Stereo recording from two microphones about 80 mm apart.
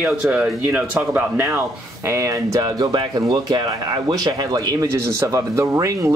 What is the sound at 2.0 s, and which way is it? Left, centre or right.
Speech, right.